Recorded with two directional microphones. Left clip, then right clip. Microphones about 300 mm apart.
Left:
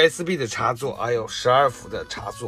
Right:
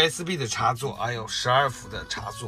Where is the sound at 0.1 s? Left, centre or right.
Centre.